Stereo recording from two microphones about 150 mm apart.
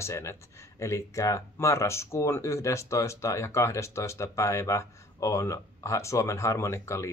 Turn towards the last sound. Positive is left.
turn(degrees=20)  # may be behind; listen again after turning